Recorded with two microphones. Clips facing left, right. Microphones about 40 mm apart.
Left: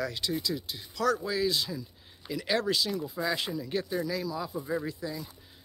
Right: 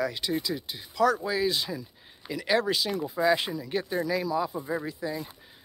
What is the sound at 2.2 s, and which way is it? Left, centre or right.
Speech, centre.